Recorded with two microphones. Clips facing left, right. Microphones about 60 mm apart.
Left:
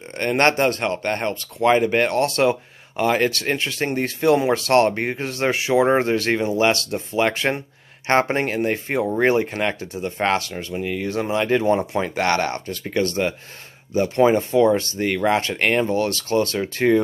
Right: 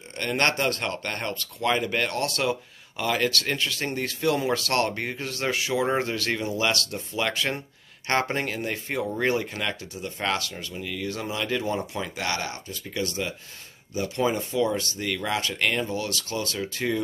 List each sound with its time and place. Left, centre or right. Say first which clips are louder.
0.2 s speech: left 7 dB; left